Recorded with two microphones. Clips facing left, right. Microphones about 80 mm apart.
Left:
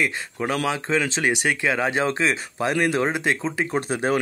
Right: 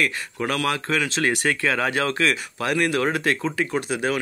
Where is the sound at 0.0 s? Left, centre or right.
Centre.